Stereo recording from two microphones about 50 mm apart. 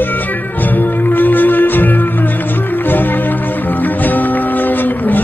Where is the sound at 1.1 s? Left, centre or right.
Left.